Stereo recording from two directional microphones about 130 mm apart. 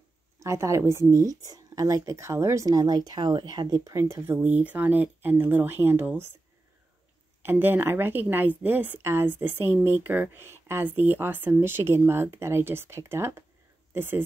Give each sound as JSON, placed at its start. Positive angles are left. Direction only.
{"t": 0.4, "sound": "speech", "side_deg": -20}
{"t": 7.4, "sound": "speech", "side_deg": -15}